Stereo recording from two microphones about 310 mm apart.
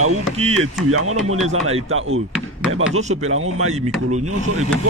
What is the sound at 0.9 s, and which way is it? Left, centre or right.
A man's voice, right.